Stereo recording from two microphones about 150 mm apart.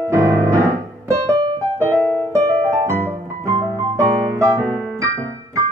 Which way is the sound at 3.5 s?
20° right (ahead or behind).